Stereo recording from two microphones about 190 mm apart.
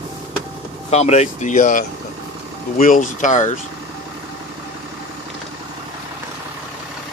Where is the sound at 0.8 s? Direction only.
35° left (ahead or behind).